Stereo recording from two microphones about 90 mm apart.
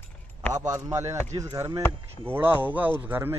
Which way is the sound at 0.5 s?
35° right (ahead or behind).